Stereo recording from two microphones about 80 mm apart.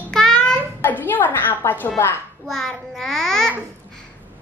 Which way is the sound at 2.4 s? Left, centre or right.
Centre.